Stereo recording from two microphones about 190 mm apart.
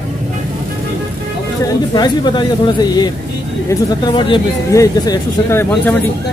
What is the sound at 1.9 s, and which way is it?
Speech, 25° left (ahead or behind).